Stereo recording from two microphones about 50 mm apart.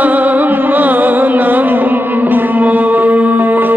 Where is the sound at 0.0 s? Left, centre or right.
Right.